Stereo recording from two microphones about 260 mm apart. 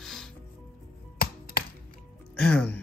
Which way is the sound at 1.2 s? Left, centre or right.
Left.